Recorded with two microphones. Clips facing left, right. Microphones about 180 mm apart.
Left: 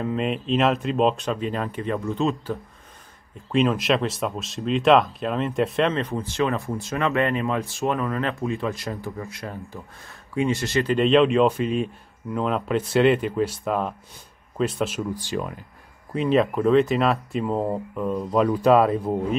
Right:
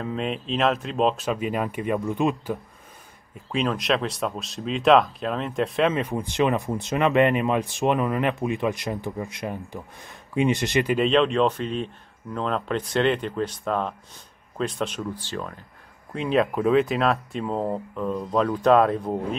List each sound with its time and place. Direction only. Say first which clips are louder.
0.0 s speech: left 3 dB; centre (ahead or behind)
3.5 s speech: left 3 dB; centre (ahead or behind); by 11.0 s 15° right (ahead or behind)
11.0 s speech: left 4 dB; centre (ahead or behind)
16.1 s speech: left 2 dB; centre (ahead or behind)